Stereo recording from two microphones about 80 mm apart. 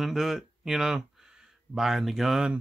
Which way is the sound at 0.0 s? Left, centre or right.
Centre.